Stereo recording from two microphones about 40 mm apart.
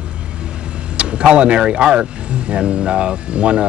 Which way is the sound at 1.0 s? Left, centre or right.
Right.